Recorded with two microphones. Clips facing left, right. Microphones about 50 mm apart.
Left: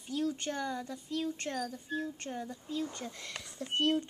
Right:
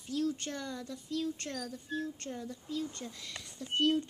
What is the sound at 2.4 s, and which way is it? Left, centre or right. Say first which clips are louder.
Speech: left 1 dB; left.